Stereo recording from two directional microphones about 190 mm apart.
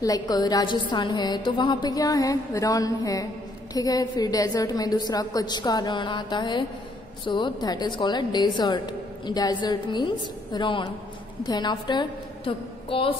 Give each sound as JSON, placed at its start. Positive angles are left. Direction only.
{"t": 0.0, "sound": "a woman's voice", "side_deg": 20}